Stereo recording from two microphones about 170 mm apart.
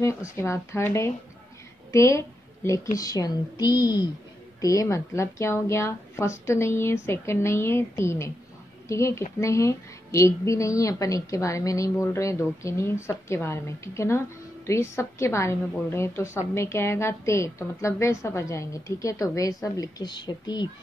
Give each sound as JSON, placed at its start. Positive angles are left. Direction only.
{"t": 0.0, "sound": "a woman's voice", "side_deg": 15}